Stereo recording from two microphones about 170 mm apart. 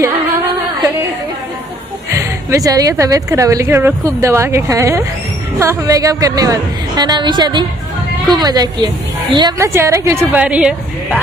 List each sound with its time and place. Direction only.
2.1 s a woman's voice: 20° right (ahead or behind)